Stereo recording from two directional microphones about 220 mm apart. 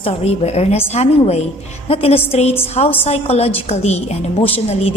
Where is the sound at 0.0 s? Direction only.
30° left (ahead or behind).